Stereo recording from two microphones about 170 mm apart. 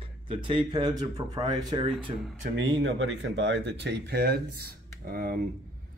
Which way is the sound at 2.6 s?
90° right.